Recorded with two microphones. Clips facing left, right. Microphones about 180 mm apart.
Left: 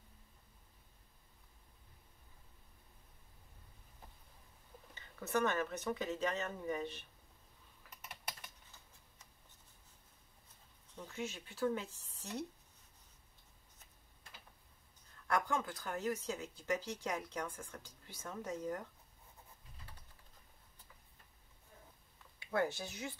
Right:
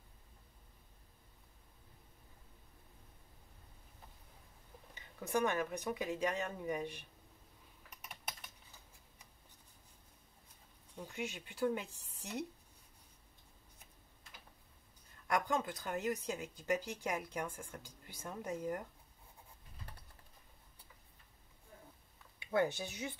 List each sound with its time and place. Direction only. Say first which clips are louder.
4.9 s speech: even; 15° right (ahead or behind)
11.0 s speech: right 1 dB; 15° right (ahead or behind)
15.2 s speech: right 1 dB; 15° right (ahead or behind)
22.4 s speech: right 2 dB; 20° right (ahead or behind)